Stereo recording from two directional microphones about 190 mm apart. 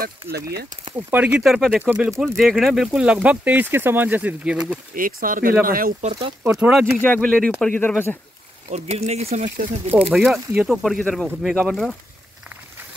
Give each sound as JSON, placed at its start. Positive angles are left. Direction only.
{"t": 0.9, "sound": "speech", "side_deg": -10}
{"t": 4.9, "sound": "speech", "side_deg": -45}
{"t": 6.4, "sound": "speech", "side_deg": -5}
{"t": 7.0, "sound": "speech", "side_deg": 10}
{"t": 8.6, "sound": "speech", "side_deg": -35}
{"t": 9.9, "sound": "speech", "side_deg": -5}